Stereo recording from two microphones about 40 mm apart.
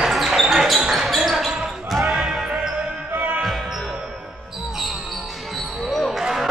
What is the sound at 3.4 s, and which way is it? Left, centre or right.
Music, centre.